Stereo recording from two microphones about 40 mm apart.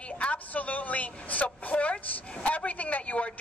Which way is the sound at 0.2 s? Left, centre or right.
Left.